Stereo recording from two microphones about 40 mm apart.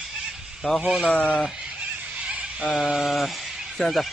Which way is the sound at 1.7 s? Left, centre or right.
Right.